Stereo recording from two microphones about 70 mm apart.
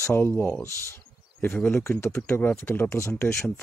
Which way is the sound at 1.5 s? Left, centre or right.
Left.